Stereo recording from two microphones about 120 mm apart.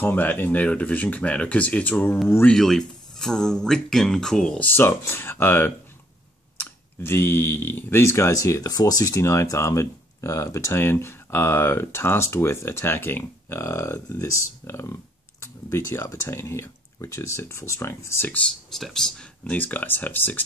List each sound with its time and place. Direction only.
0.0 s speech: 15° left (ahead or behind)
18.7 s speech: centre (ahead or behind)